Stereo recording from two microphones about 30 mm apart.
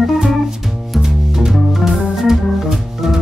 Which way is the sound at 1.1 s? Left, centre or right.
Centre.